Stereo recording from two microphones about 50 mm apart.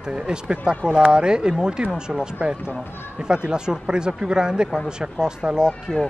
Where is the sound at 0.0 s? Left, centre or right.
Centre.